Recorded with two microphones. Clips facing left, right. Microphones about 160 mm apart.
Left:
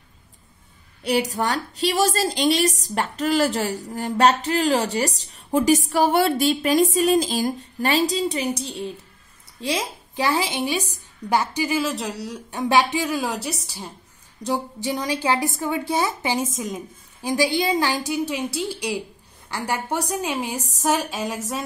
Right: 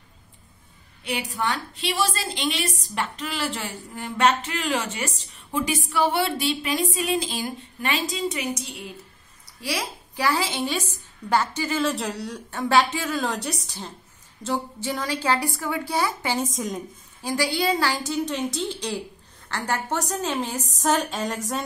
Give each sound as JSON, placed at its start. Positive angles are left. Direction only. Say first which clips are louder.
{"t": 1.0, "sound": "a woman's voice", "louder": "left 5 dB", "side_deg": 40}
{"t": 11.9, "sound": "speech", "louder": "even", "side_deg": 0}
{"t": 12.4, "sound": "a woman's voice", "louder": "left 1 dB", "side_deg": 15}
{"t": 16.5, "sound": "speech", "louder": "even", "side_deg": 0}
{"t": 17.2, "sound": "a woman's voice", "louder": "left 3 dB", "side_deg": 15}